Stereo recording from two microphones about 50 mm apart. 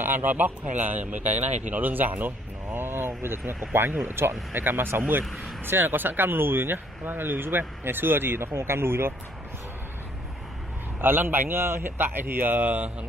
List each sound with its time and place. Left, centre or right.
0.0 s speech: right
11.0 s speech: right